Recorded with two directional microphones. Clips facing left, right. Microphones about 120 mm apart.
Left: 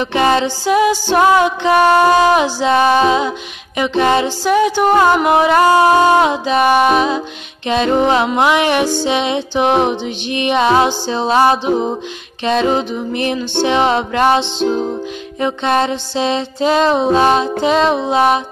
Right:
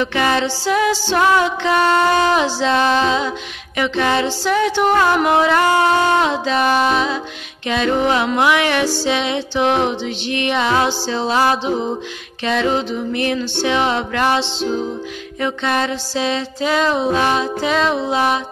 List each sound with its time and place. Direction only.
0.0 s music: 20° left (ahead or behind)